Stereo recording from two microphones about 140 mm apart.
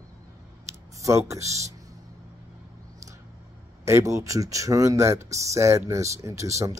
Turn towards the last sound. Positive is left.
turn(degrees=-20)  # may be behind; listen again after turning